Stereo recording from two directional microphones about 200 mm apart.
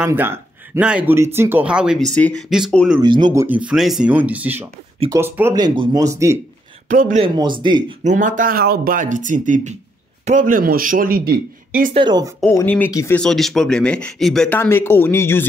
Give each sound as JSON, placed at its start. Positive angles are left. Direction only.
{"t": 0.0, "sound": "speech", "side_deg": -10}
{"t": 3.0, "sound": "speech", "side_deg": -20}
{"t": 3.3, "sound": "speech", "side_deg": -10}
{"t": 6.9, "sound": "speech", "side_deg": -40}
{"t": 7.3, "sound": "speech", "side_deg": -25}
{"t": 8.0, "sound": "a man's voice", "side_deg": -40}
{"t": 11.9, "sound": "speech", "side_deg": -25}
{"t": 12.4, "sound": "speech", "side_deg": 10}
{"t": 13.2, "sound": "speech", "side_deg": 0}